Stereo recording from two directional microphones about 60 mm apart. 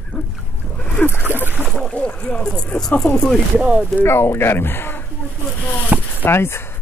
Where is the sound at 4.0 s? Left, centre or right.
Left.